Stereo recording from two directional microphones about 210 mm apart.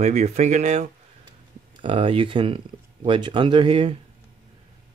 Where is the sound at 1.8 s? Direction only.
25° right (ahead or behind).